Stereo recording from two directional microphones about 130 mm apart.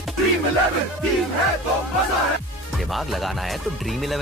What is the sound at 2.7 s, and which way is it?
Speech, centre (ahead or behind).